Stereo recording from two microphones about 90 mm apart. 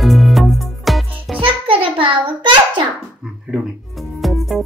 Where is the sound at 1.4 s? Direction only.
75° right (ahead or behind).